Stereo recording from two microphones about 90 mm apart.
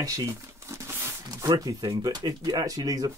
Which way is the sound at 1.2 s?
45° right (ahead or behind).